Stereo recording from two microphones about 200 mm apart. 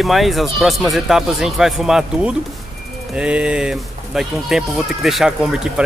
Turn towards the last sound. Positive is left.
turn(degrees=-5)  # may be behind; listen again after turning